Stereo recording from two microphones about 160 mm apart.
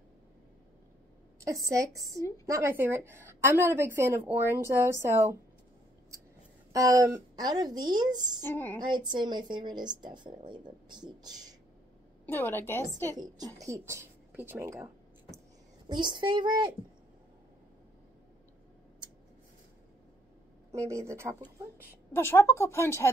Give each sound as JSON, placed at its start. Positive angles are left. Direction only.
{"t": 1.4, "sound": "a woman's voice", "side_deg": -20}
{"t": 6.7, "sound": "speech", "side_deg": -20}
{"t": 8.5, "sound": "speech", "side_deg": 10}
{"t": 8.7, "sound": "speech", "side_deg": -25}
{"t": 12.3, "sound": "speech", "side_deg": 15}
{"t": 13.6, "sound": "speech", "side_deg": -20}
{"t": 15.9, "sound": "speech", "side_deg": -30}
{"t": 20.7, "sound": "a woman's voice", "side_deg": -20}
{"t": 22.1, "sound": "speech", "side_deg": 15}